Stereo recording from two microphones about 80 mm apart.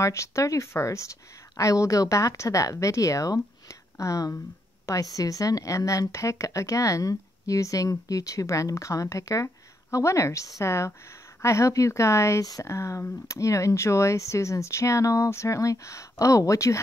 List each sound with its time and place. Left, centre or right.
0.0 s a woman's voice: left